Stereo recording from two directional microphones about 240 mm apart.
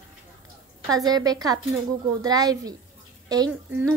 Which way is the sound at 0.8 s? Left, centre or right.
Centre.